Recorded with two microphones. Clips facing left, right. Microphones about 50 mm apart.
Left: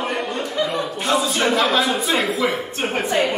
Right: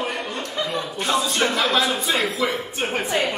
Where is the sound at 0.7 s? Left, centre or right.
Centre.